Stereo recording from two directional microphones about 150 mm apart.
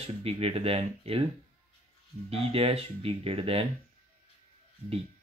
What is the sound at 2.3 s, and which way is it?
Speech, 40° right (ahead or behind).